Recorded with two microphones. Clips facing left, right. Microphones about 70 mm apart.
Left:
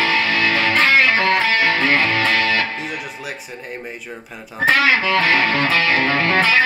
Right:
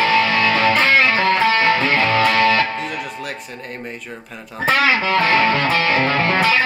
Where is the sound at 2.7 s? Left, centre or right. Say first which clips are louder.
Right 2 dB; centre.